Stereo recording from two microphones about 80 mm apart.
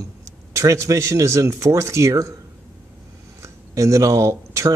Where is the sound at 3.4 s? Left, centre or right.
Right.